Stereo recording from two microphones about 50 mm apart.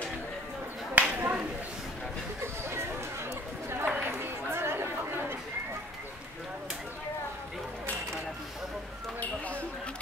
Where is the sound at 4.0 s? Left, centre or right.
Right.